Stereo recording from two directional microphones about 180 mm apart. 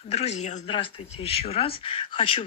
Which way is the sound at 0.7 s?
30° left (ahead or behind).